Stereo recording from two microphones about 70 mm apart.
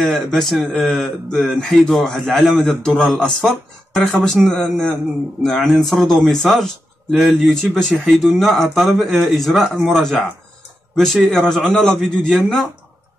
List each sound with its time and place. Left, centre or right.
0.0 s a man's voice: centre
11.3 s a man's voice: centre